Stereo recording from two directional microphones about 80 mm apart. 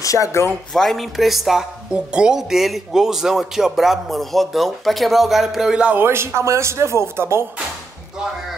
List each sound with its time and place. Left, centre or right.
0.0 s speech: left
0.7 s speech: centre
5.9 s speech: right